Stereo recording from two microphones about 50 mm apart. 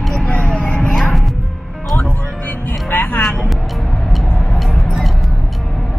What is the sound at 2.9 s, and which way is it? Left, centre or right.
Music, left.